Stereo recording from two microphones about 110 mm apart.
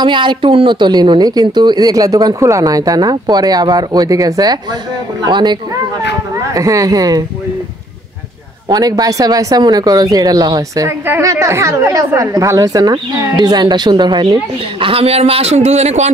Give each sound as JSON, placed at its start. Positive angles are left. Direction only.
{"t": 0.0, "sound": "a woman's voice", "side_deg": -45}
{"t": 6.3, "sound": "speech", "side_deg": -30}
{"t": 8.6, "sound": "a woman's voice", "side_deg": -35}
{"t": 10.9, "sound": "a woman's voice", "side_deg": -25}
{"t": 14.3, "sound": "speech", "side_deg": -55}